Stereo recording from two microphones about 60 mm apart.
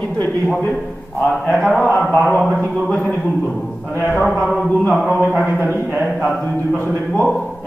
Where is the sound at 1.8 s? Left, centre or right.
Left.